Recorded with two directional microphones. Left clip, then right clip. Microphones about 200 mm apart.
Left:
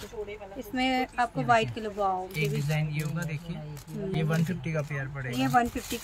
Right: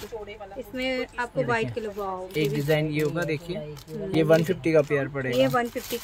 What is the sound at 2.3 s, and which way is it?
Speech, 25° right (ahead or behind).